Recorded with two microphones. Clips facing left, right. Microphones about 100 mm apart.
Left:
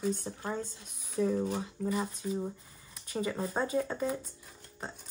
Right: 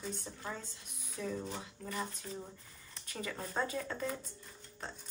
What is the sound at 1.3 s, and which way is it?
Speech, 45° left (ahead or behind).